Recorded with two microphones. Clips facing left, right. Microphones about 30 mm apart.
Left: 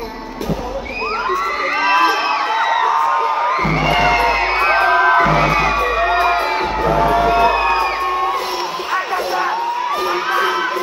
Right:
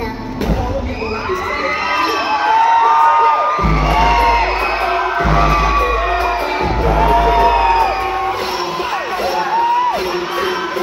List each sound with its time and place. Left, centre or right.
3.1 s music: right
4.3 s music: centre
7.3 s music: centre